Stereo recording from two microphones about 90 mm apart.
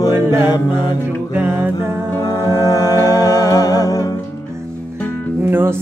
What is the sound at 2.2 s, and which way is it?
Music, 45° left (ahead or behind).